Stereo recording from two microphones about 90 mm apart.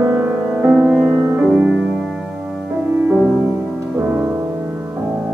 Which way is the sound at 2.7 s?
20° right (ahead or behind).